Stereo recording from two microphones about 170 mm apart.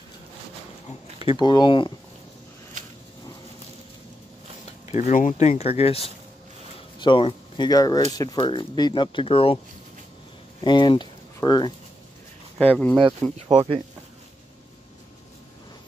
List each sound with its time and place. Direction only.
1.2 s speech: 25° left (ahead or behind)
4.9 s speech: 50° left (ahead or behind)
5.5 s speech: 35° left (ahead or behind)
10.6 s speech: 25° left (ahead or behind)
12.5 s speech: 5° left (ahead or behind)
13.5 s speech: 30° right (ahead or behind)